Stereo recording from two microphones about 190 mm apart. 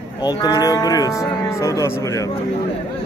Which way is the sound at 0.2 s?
20° left (ahead or behind).